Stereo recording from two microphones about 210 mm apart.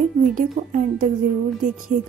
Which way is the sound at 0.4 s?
40° right (ahead or behind).